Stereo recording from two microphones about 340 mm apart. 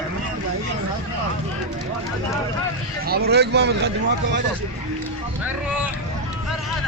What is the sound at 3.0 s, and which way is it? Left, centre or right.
Speech, right.